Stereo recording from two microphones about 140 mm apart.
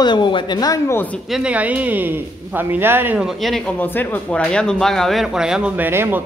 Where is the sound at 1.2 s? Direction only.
5° right (ahead or behind).